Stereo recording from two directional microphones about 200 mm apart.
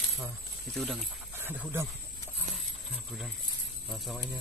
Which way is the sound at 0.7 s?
Centre (ahead or behind).